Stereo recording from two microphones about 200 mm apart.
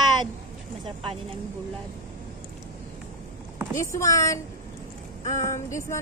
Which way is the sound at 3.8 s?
15° left (ahead or behind).